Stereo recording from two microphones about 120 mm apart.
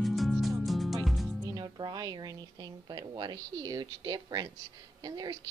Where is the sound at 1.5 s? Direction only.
35° right (ahead or behind).